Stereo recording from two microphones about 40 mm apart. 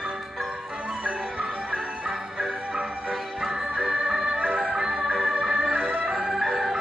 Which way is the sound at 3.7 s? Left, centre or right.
Right.